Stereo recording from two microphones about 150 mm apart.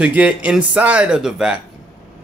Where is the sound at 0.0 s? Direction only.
10° right (ahead or behind).